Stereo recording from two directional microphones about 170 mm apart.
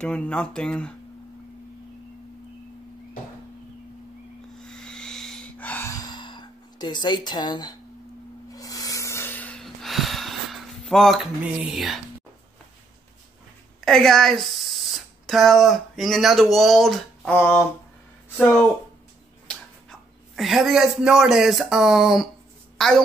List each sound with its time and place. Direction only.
0.0 s speech: 5° left (ahead or behind)
4.6 s music: 5° left (ahead or behind); by 7.7 s 25° left (ahead or behind)
8.5 s a sound: 20° left (ahead or behind); by 12.0 s centre (ahead or behind)
13.8 s a woman's voice: 5° left (ahead or behind)